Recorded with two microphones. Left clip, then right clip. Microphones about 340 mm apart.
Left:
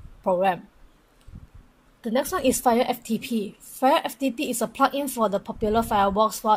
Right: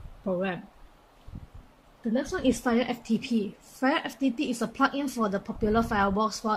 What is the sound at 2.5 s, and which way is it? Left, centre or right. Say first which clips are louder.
A woman's voice: left 6 dB; centre.